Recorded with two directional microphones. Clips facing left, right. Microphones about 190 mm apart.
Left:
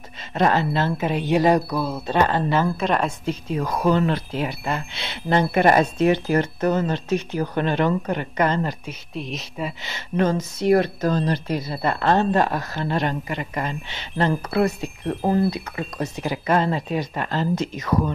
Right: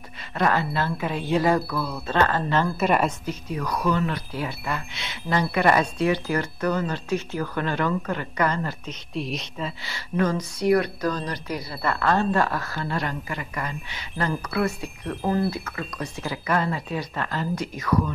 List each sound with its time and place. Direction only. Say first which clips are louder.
0.3 s speech: left 3 dB; 25° left (ahead or behind)
2.6 s a woman's voice: even; 5° right (ahead or behind)
3.3 s speech: left 4 dB; 25° left (ahead or behind)
8.8 s speech: right 1 dB; centre (ahead or behind)
9.6 s speech: left 3 dB; 20° left (ahead or behind)
15.5 s speech: left 3 dB; 15° left (ahead or behind)